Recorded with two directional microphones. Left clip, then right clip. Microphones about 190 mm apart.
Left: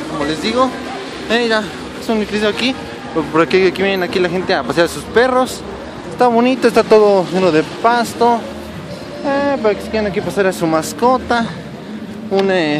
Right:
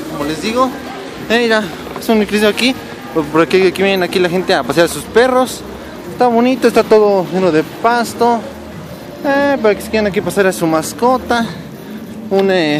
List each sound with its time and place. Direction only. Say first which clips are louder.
0.3 s speech: right 1 dB; 5° right (ahead or behind)
1.3 s speech: right 2 dB; 35° right (ahead or behind)
3.2 s speech: right 1 dB; 20° right (ahead or behind)
7.0 s speech: even; centre (ahead or behind)
9.2 s speech: right 3 dB; 30° right (ahead or behind); by 12.7 s 15° right (ahead or behind)